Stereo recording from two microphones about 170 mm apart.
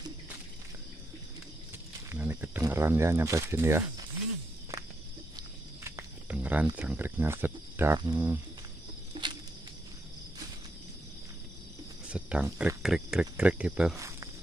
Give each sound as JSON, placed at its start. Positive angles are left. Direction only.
{"t": 2.0, "sound": "speech", "side_deg": -10}
{"t": 5.9, "sound": "a sound", "side_deg": -15}
{"t": 6.8, "sound": "speech", "side_deg": -10}
{"t": 9.1, "sound": "walk", "side_deg": -25}
{"t": 12.1, "sound": "cricket", "side_deg": -5}
{"t": 12.5, "sound": "speech", "side_deg": -5}
{"t": 13.9, "sound": "cricket", "side_deg": -20}